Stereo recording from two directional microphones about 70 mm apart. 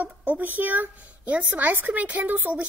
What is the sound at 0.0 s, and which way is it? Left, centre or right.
A woman's voice, right.